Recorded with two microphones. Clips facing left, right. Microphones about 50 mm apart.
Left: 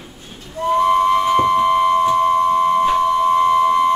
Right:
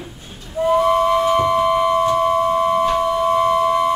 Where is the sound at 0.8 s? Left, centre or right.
Centre.